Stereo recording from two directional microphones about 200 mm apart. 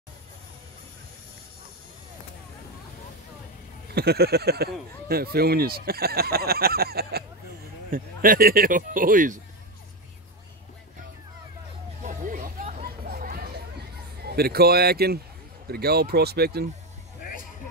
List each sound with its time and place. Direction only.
3.9 s speech: 55° right (ahead or behind)
12.0 s hubbub: 40° right (ahead or behind)
14.2 s speech: 50° right (ahead or behind)
17.2 s vehicle: 45° left (ahead or behind)